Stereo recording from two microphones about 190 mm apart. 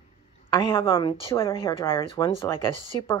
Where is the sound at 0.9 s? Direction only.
25° left (ahead or behind).